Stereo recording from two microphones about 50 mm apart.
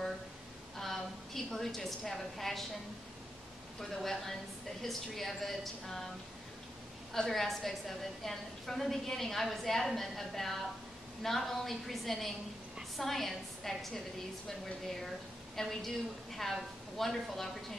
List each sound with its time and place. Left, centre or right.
0.7 s a sound: centre
3.9 s a woman's voice: centre
7.2 s a woman's voice: centre
15.5 s a woman's voice: centre